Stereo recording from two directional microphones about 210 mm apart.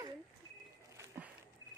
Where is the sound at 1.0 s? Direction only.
10° right (ahead or behind).